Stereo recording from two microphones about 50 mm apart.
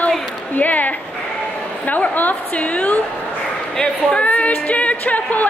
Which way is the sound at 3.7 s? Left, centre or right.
Left.